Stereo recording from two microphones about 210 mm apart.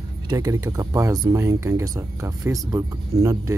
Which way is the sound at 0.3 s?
15° right (ahead or behind).